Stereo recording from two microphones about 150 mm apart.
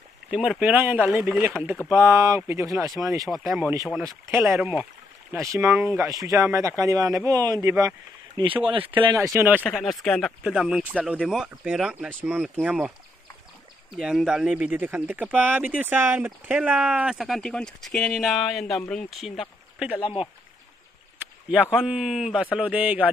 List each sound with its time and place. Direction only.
0.3 s speech: 5° right (ahead or behind); by 3.3 s 20° right (ahead or behind)
3.3 s speech: centre (ahead or behind)
4.0 s speech: 20° right (ahead or behind)
8.4 s speech: 35° right (ahead or behind)
9.1 s speech: 20° right (ahead or behind)
9.8 s speech: centre (ahead or behind)
13.9 s speech: 5° right (ahead or behind)
21.5 s speech: 5° right (ahead or behind)